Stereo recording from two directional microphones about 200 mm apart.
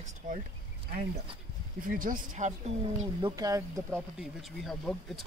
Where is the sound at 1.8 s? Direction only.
45° right (ahead or behind).